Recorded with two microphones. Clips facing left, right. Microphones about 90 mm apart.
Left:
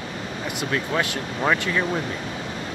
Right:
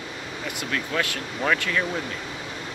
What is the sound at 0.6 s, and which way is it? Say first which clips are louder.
Speech: left 3 dB; 25° left (ahead or behind).